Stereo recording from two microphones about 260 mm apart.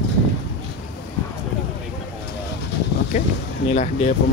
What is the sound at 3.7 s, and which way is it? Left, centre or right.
Speech, left.